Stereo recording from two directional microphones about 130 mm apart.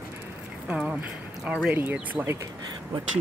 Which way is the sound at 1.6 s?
10° right (ahead or behind).